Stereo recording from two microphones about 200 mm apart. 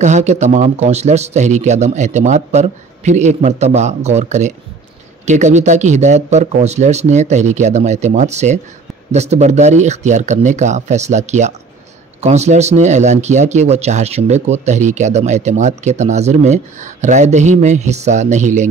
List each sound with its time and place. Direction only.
0.0 s speech: 35° right (ahead or behind)